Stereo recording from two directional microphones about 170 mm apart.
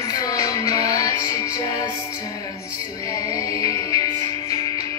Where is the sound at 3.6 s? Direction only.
20° left (ahead or behind).